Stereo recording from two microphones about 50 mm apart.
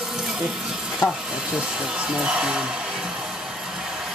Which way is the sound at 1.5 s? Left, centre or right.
Centre.